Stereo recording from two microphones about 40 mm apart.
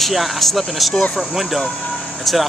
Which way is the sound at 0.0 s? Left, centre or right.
Centre.